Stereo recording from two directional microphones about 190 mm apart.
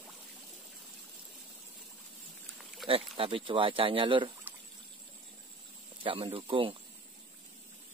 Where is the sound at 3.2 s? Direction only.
25° right (ahead or behind).